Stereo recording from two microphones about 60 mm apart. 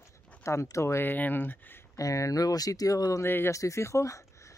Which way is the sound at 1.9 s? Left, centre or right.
Left.